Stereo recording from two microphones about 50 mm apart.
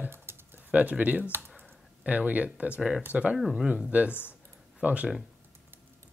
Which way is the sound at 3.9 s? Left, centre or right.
Right.